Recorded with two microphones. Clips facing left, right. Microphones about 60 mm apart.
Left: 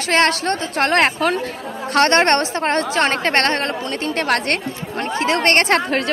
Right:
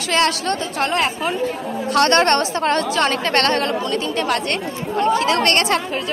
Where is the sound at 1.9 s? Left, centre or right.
Left.